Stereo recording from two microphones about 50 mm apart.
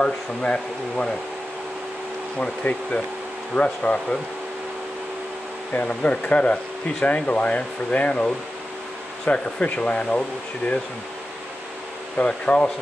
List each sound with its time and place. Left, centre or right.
0.0 s speech: left
2.3 s speech: left
5.9 s speech: left
12.3 s speech: left